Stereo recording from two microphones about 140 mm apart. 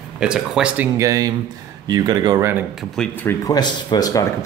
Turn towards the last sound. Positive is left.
turn(degrees=25)  # may be behind; listen again after turning